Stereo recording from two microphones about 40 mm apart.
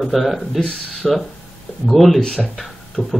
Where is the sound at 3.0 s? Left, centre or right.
Left.